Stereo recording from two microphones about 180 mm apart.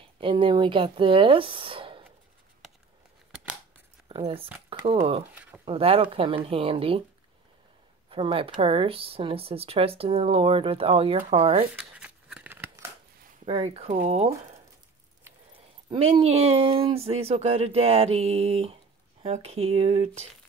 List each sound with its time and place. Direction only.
0.0 s speech: 30° right (ahead or behind)
4.1 s speech: 30° right (ahead or behind)
5.7 s speech: 30° right (ahead or behind)
8.1 s speech: 30° right (ahead or behind)
11.9 s scissors: 5° right (ahead or behind)
13.5 s speech: 30° right (ahead or behind)